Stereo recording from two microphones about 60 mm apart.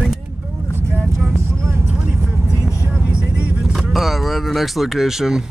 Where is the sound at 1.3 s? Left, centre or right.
Right.